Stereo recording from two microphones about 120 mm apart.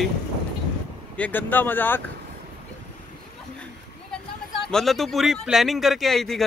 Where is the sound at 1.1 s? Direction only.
15° left (ahead or behind).